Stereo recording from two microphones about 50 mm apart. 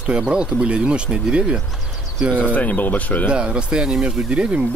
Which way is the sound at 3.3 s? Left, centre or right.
Centre.